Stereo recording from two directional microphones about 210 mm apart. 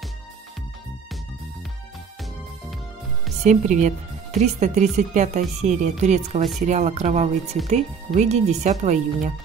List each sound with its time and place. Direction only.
3.4 s speech: 35° right (ahead or behind)